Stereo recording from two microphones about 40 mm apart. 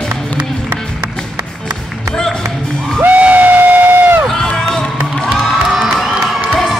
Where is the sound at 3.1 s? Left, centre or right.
Right.